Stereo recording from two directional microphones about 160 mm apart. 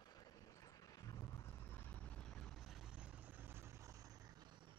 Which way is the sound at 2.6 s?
5° right (ahead or behind).